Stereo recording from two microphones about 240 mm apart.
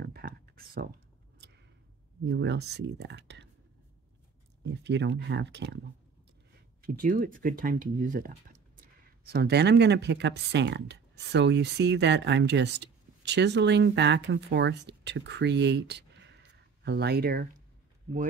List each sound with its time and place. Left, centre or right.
0.0 s a sound: right
2.2 s speech: right
4.6 s speech: right
6.8 s speech: right